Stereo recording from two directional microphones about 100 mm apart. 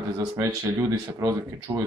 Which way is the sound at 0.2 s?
35° right (ahead or behind).